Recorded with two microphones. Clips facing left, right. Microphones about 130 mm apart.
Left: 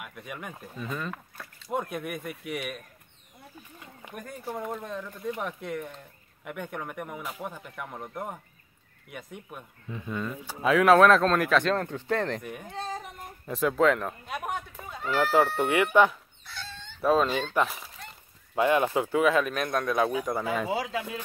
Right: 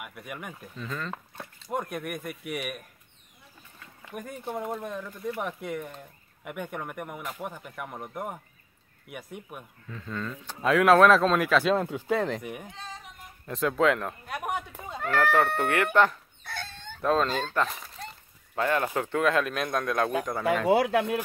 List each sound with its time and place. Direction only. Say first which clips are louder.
0.0 s speech: even; 5° right (ahead or behind)
0.7 s speech: left 1 dB; 10° left (ahead or behind)
1.1 s speech: right 3 dB; 25° right (ahead or behind)
1.7 s speech: left 1 dB; centre (ahead or behind)
4.1 s speech: right 2 dB; 15° right (ahead or behind)
9.8 s speech: left 2 dB; 15° left (ahead or behind); by 12.6 s 5° right (ahead or behind)
12.7 s child singing: left 8 dB; 45° left (ahead or behind)
13.5 s speech: left 1 dB; centre (ahead or behind)
14.5 s a sound: right 2 dB; 15° right (ahead or behind)
15.3 s speech: left 1 dB; 10° left (ahead or behind)
16.4 s chicken: right 4 dB; 55° right (ahead or behind)
17.0 s speech: left 2 dB; 5° left (ahead or behind)
18.5 s speech: left 3 dB; 15° left (ahead or behind)
20.6 s speech: right 8 dB; 65° right (ahead or behind)